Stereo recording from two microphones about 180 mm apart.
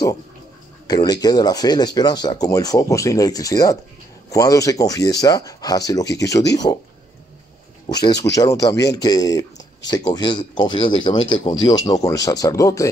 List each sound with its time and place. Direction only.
0.8 s speech: 20° left (ahead or behind)
7.8 s speech: 20° left (ahead or behind)